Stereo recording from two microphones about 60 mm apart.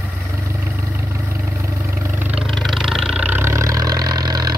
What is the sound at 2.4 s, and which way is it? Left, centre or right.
Vehicle, centre.